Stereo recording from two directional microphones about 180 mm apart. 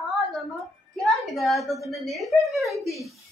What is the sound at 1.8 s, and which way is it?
Speech, centre (ahead or behind).